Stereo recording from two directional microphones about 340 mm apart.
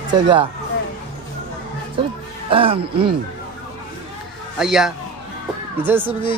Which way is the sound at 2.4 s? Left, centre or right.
Centre.